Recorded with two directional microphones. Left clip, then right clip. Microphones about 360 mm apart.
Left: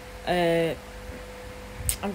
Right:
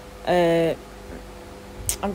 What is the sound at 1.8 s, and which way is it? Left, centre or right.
Music, centre.